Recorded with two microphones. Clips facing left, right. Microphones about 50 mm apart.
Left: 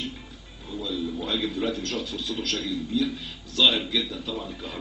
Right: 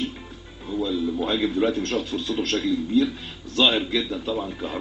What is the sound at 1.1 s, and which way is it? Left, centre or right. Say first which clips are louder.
A man's voice: right 5 dB; right.